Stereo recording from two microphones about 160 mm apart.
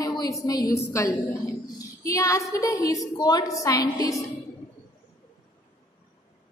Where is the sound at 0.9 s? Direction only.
20° left (ahead or behind).